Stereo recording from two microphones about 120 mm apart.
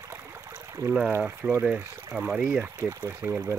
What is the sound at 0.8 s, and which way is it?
Speech, 35° right (ahead or behind).